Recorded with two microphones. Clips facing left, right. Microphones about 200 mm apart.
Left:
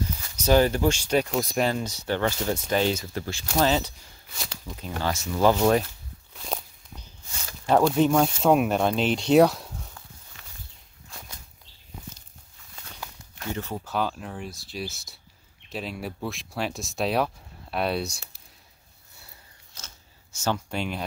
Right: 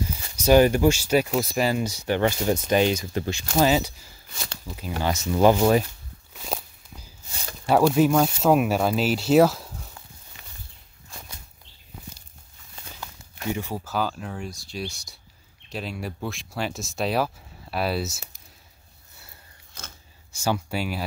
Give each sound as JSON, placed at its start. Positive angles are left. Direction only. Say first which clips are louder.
{"t": 0.4, "sound": "speech", "louder": "right 4 dB", "side_deg": -15}
{"t": 5.6, "sound": "speech", "louder": "right 1 dB", "side_deg": -5}
{"t": 6.3, "sound": "walk", "louder": "right 2 dB", "side_deg": -5}
{"t": 7.6, "sound": "speech", "louder": "right 2 dB", "side_deg": -5}
{"t": 11.1, "sound": "bird flight", "louder": "right 1 dB", "side_deg": -5}
{"t": 13.4, "sound": "speech", "louder": "right 3 dB", "side_deg": -15}
{"t": 19.7, "sound": "a sound", "louder": "right 5 dB", "side_deg": -55}
{"t": 20.3, "sound": "speech", "louder": "right 2 dB", "side_deg": -10}